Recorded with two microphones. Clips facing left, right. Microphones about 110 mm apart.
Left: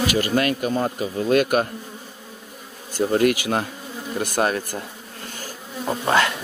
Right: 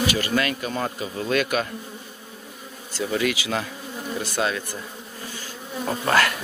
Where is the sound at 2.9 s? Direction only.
45° left (ahead or behind).